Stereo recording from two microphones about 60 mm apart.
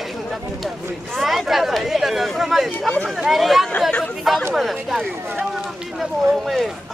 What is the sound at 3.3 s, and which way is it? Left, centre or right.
A man's voice, centre.